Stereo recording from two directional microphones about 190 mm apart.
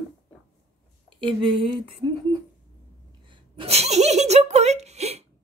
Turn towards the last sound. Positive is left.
turn(degrees=-35)  # may be behind; listen again after turning